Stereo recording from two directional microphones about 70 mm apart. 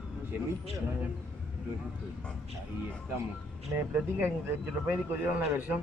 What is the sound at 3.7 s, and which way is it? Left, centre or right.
Speech, right.